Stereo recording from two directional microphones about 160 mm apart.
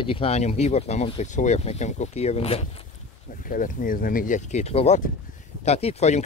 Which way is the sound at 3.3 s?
60° left (ahead or behind).